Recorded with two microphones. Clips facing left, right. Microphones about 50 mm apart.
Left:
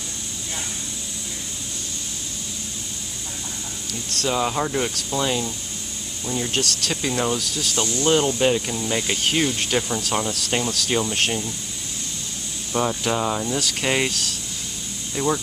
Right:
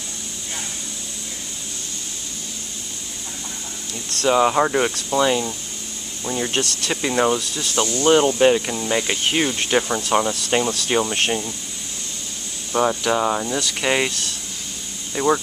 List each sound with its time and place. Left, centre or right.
4.1 s speech: right
6.2 s speech: right
12.7 s speech: centre
15.2 s speech: centre